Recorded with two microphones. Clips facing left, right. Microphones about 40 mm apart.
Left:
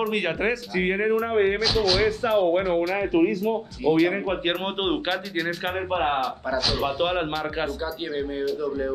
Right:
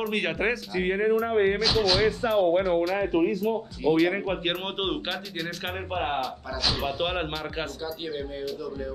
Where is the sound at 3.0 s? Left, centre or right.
Left.